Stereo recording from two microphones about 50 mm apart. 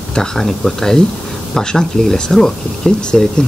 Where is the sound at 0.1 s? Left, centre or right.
Centre.